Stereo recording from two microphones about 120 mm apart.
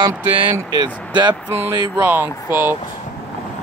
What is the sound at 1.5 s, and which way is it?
Speech, 15° right (ahead or behind).